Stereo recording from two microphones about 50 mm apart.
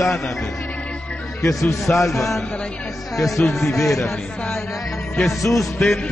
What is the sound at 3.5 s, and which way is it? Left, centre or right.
Speech, left.